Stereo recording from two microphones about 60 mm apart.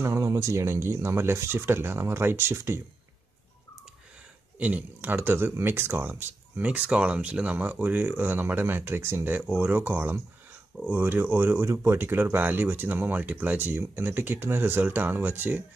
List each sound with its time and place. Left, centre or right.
0.2 s speech: right
4.6 s speech: right
6.6 s speech: centre; by 12.0 s right
12.0 s speech: right